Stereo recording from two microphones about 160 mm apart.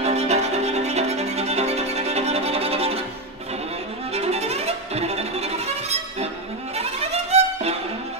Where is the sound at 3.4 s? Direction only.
40° right (ahead or behind).